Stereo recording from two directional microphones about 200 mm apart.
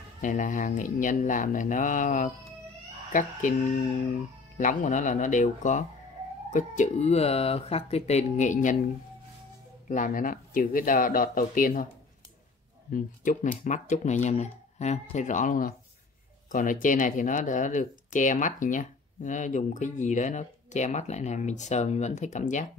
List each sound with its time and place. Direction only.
0.2 s speech: 40° left (ahead or behind)
9.8 s speech: 40° left (ahead or behind)
12.9 s speech: 40° left (ahead or behind)